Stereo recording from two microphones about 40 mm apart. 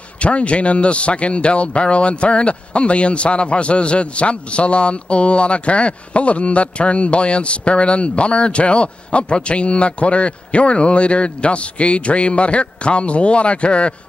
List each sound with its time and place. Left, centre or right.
0.2 s a man's voice: left